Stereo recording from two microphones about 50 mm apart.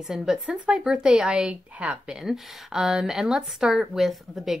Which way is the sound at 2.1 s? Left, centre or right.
Centre.